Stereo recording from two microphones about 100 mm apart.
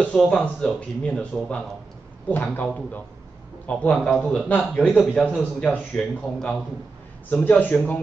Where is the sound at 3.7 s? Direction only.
15° left (ahead or behind).